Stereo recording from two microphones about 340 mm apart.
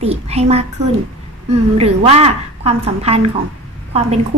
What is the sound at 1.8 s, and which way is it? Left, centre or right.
A woman's voice, centre.